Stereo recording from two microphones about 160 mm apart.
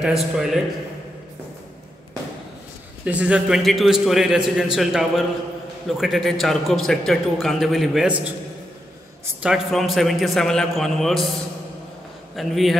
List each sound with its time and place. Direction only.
0.0 s a man's voice: centre (ahead or behind)
3.1 s a man's voice: 10° right (ahead or behind)
12.4 s a man's voice: centre (ahead or behind)